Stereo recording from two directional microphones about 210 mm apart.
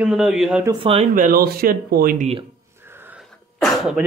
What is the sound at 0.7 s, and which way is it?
Speech, 25° right (ahead or behind).